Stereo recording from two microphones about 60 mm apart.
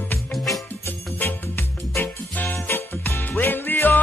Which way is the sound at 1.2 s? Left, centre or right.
Left.